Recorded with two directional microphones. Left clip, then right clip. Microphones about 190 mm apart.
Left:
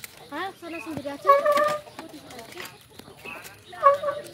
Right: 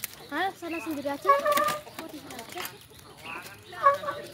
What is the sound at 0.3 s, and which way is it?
Speech, 35° right (ahead or behind).